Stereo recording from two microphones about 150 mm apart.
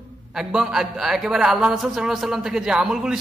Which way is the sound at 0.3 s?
5° right (ahead or behind).